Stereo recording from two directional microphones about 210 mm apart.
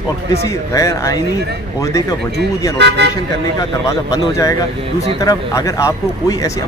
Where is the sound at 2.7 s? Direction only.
55° right (ahead or behind).